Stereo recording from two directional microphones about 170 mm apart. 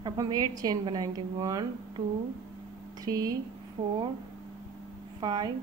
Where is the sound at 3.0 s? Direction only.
20° right (ahead or behind).